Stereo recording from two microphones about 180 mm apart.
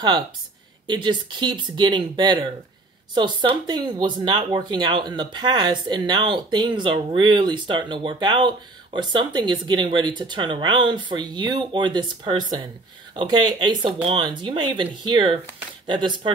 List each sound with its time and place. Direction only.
0.8 s speech: 25° right (ahead or behind)